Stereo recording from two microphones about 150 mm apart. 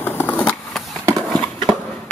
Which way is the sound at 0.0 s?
15° left (ahead or behind).